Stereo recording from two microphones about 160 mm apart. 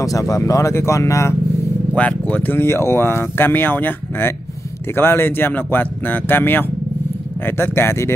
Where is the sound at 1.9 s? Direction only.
10° left (ahead or behind).